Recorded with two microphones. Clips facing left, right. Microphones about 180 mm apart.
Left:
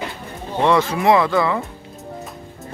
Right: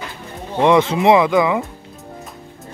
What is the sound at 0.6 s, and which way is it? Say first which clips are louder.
Speech: right 3 dB; 20° right (ahead or behind).